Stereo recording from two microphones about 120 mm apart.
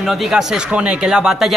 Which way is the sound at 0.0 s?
Centre (ahead or behind).